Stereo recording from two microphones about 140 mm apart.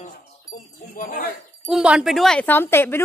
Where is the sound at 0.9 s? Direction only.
85° left.